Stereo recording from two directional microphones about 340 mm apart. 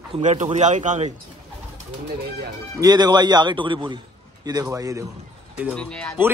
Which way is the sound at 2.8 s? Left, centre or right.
Centre.